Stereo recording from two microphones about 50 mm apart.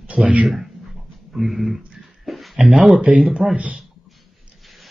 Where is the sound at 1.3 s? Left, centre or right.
Centre.